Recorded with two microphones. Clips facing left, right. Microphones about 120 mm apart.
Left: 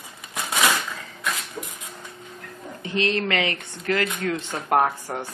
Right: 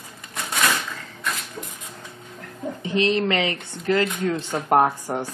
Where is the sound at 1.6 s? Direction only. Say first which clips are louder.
Left 1 dB; 5° left (ahead or behind).